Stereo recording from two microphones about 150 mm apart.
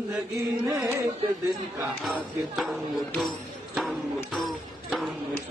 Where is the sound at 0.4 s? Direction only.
20° right (ahead or behind).